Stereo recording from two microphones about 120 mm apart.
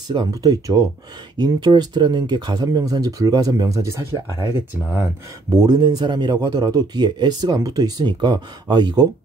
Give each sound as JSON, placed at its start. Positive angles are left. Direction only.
{"t": 0.1, "sound": "speech", "side_deg": -35}
{"t": 5.5, "sound": "speech", "side_deg": -35}